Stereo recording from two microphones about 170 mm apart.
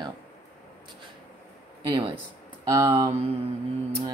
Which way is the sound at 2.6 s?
20° right (ahead or behind).